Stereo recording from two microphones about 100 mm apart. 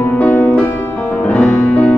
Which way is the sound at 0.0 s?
20° left (ahead or behind).